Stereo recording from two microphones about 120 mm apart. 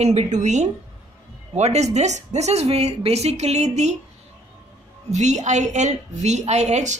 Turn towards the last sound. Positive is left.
turn(degrees=-70)  # may be behind; listen again after turning